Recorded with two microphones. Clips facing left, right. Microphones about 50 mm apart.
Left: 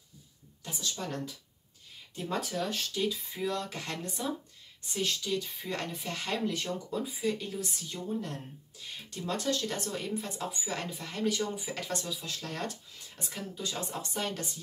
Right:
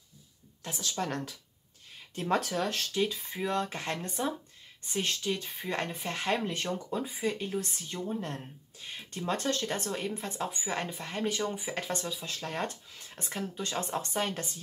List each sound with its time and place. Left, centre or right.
0.7 s speech: right
3.3 s speech: right
10.4 s speech: centre
13.1 s speech: right
14.2 s speech: right